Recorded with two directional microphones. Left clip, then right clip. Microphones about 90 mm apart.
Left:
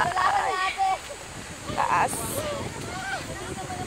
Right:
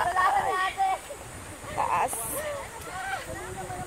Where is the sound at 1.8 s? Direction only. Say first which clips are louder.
Left 3 dB; 15° right (ahead or behind).